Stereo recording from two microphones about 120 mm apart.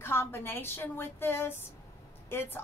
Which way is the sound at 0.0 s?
20° left (ahead or behind).